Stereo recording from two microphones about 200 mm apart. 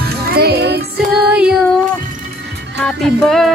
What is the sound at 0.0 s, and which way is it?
Music, 50° right (ahead or behind).